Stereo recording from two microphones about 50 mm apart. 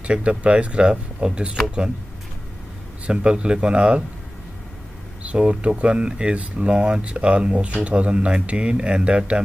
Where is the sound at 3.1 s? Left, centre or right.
Centre.